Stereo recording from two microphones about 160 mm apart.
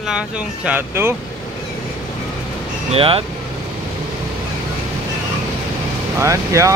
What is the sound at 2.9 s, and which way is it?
Speech, 35° right (ahead or behind).